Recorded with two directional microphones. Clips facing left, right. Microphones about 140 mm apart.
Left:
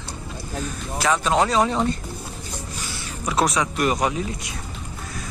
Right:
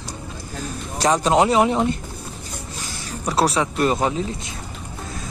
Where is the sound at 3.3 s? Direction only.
35° right (ahead or behind).